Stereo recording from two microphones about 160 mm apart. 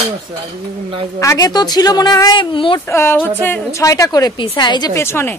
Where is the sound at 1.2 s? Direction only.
20° left (ahead or behind).